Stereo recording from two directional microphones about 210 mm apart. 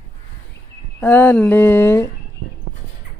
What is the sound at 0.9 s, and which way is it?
Speech, 10° left (ahead or behind).